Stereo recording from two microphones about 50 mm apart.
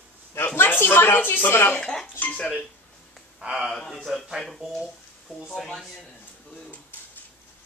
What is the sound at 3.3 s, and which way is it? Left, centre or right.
Speech, centre.